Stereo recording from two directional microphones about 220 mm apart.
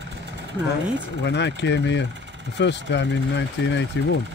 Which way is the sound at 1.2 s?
50° left (ahead or behind).